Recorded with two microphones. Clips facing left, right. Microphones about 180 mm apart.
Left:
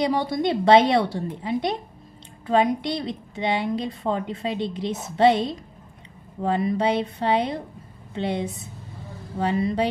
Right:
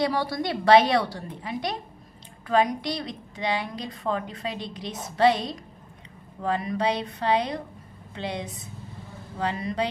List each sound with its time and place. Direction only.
0.0 s a woman's voice: 20° left (ahead or behind)
6.4 s a woman's voice: 30° left (ahead or behind)